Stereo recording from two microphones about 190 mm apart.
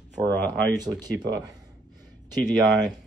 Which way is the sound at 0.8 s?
20° right (ahead or behind).